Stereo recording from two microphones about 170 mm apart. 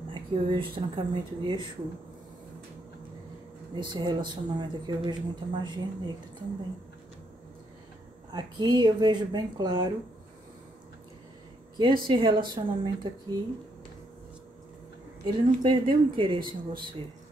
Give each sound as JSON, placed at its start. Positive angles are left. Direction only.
{"t": 0.1, "sound": "a woman's voice", "side_deg": -30}
{"t": 3.7, "sound": "a woman's voice", "side_deg": -25}
{"t": 8.3, "sound": "a woman's voice", "side_deg": -25}
{"t": 11.8, "sound": "a woman's voice", "side_deg": -25}
{"t": 15.2, "sound": "a woman's voice", "side_deg": -30}